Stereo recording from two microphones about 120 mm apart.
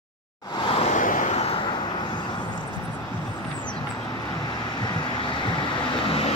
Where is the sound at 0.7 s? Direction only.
50° left (ahead or behind).